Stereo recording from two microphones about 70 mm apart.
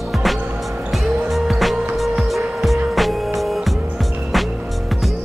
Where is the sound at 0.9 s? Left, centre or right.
Centre.